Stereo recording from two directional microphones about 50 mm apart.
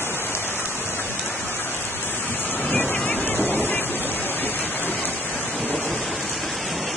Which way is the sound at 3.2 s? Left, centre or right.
Left.